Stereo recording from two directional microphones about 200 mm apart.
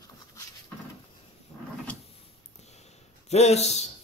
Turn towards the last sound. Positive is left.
turn(degrees=35)  # may be behind; listen again after turning